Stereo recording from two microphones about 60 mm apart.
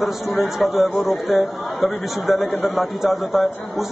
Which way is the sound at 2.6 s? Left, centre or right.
Left.